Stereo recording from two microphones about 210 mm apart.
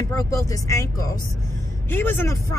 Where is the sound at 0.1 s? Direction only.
15° left (ahead or behind).